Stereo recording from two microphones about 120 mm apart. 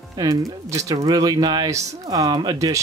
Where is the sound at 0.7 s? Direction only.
25° right (ahead or behind).